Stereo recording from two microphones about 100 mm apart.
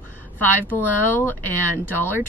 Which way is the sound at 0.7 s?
20° left (ahead or behind).